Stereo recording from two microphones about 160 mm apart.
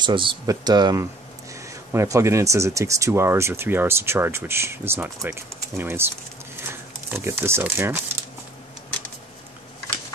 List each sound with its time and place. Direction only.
0.0 s speech: 30° right (ahead or behind); by 6.0 s 15° right (ahead or behind)
6.6 s a sound: 15° right (ahead or behind)
7.2 s speech: 15° right (ahead or behind)